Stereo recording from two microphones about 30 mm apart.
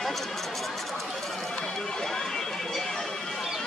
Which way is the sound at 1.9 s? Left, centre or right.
Centre.